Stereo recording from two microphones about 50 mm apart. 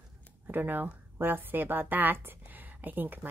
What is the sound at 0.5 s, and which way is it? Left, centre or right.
A woman's voice, right.